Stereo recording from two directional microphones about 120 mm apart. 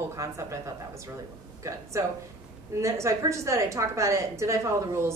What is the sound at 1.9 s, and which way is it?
Speech, 25° right (ahead or behind).